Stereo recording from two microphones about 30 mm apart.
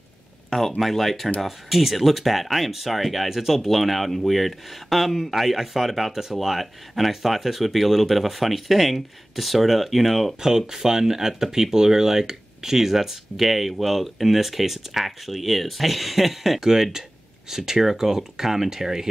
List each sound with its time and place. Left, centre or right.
0.5 s speech: centre
10.4 s speech: centre
16.5 s speech: centre